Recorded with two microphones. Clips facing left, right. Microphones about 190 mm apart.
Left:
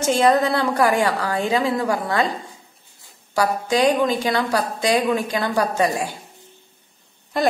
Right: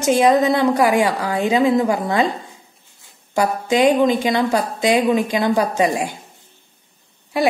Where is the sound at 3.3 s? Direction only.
20° right (ahead or behind).